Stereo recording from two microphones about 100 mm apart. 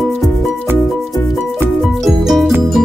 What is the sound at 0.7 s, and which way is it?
Music, 25° right (ahead or behind).